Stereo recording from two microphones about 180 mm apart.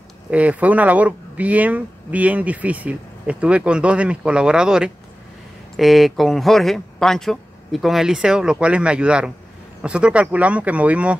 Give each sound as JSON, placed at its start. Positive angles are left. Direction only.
{"t": 0.3, "sound": "speech", "side_deg": -10}